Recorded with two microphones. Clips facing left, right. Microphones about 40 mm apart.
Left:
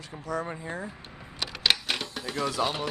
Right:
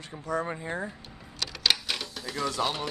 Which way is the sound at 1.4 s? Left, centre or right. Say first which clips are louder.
Left 1 dB; centre.